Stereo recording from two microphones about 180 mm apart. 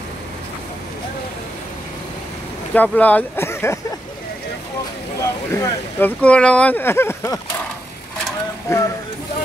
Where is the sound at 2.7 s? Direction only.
10° left (ahead or behind).